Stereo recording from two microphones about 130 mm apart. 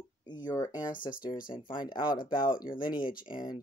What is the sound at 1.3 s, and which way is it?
Speech, 90° left.